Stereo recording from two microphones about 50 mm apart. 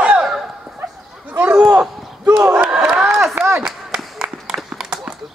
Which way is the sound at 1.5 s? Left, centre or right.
Centre.